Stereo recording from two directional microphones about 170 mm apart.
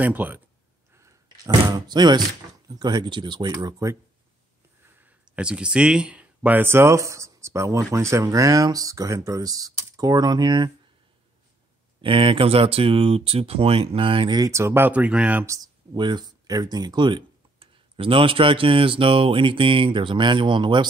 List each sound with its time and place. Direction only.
0.0 s speech: 10° right (ahead or behind)
12.0 s speech: 30° right (ahead or behind)